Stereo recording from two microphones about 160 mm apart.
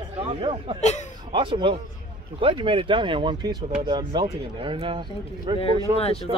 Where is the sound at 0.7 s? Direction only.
45° left (ahead or behind).